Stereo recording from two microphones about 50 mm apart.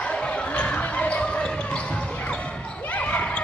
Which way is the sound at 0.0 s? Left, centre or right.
Left.